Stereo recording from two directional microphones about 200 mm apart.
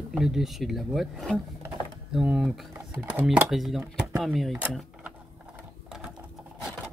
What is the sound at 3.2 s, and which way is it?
Speech, centre (ahead or behind).